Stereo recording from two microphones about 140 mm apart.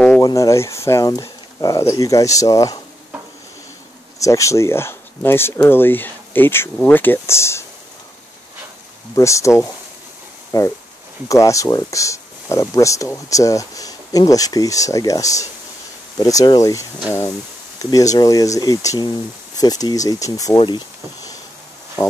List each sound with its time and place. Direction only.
0.2 s speech: 25° left (ahead or behind)
4.2 s speech: 20° left (ahead or behind)
9.1 s speech: 20° left (ahead or behind)
17.9 s speech: 25° left (ahead or behind)
20.5 s speech: 35° left (ahead or behind)